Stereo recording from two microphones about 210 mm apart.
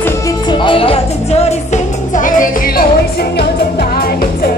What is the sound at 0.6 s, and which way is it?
Music, 25° left (ahead or behind).